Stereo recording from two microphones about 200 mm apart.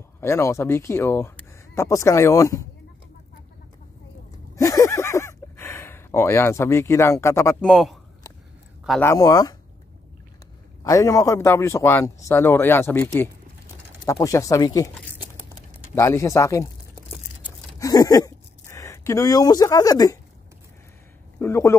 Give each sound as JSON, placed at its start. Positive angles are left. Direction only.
{"t": 0.2, "sound": "a man's voice", "side_deg": 15}
{"t": 4.6, "sound": "a sound", "side_deg": 15}
{"t": 7.6, "sound": "a man's voice", "side_deg": 0}
{"t": 9.0, "sound": "a man's voice", "side_deg": 15}
{"t": 10.8, "sound": "a man's voice", "side_deg": 15}
{"t": 15.9, "sound": "a man's voice", "side_deg": 15}
{"t": 17.7, "sound": "a sound", "side_deg": 15}
{"t": 21.4, "sound": "speech", "side_deg": 15}